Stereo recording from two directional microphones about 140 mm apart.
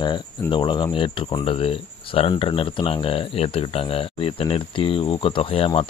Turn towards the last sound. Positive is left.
turn(degrees=45)  # may be behind; listen again after turning